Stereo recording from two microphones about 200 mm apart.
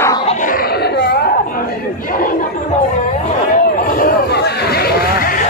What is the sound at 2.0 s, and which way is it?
Chatter, 45° left (ahead or behind).